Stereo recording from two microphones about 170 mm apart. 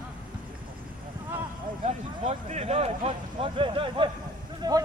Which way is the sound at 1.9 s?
40° right (ahead or behind).